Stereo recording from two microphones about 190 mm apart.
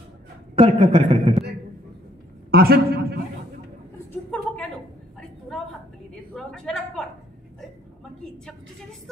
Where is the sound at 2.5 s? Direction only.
55° right (ahead or behind).